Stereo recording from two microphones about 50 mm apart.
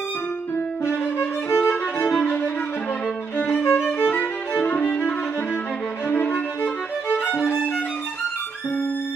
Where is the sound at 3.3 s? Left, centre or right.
Left.